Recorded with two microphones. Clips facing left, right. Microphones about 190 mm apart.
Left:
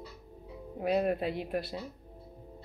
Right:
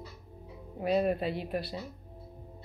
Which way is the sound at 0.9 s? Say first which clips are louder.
Right 1 dB; 5° left (ahead or behind).